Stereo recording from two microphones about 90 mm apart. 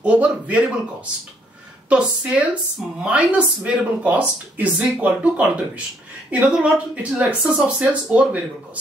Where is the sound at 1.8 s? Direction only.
15° right (ahead or behind).